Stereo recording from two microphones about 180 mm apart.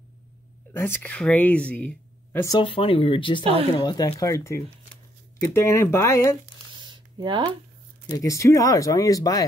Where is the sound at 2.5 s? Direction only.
30° left (ahead or behind).